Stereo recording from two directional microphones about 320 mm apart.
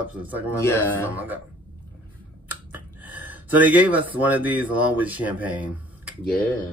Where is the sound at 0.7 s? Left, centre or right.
Centre.